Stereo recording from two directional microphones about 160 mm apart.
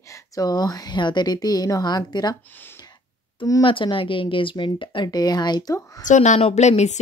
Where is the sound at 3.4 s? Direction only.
30° left (ahead or behind).